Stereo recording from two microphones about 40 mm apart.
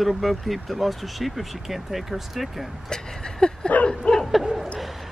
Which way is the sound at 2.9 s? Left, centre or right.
Centre.